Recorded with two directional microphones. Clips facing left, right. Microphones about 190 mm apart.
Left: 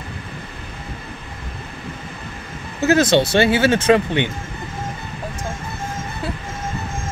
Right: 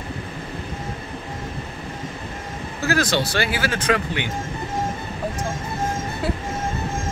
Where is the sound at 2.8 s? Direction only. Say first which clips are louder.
Left 7 dB; 20° left (ahead or behind).